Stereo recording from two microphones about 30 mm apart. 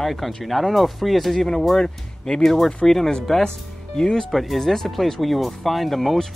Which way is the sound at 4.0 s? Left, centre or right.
Left.